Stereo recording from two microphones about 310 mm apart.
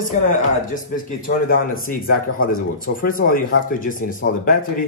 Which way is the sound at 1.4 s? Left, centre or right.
Left.